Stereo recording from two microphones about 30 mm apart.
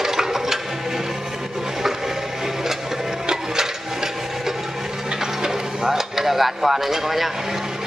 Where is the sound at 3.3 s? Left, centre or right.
Centre.